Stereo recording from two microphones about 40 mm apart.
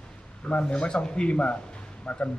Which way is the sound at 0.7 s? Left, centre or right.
Left.